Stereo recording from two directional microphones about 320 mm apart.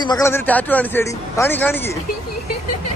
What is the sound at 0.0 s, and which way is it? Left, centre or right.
A man's voice, centre.